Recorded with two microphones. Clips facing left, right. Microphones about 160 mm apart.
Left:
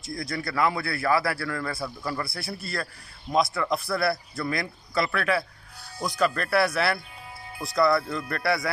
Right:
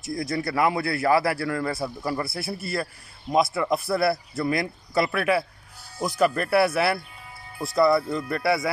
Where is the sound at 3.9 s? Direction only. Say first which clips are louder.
Right 3 dB; 25° right (ahead or behind).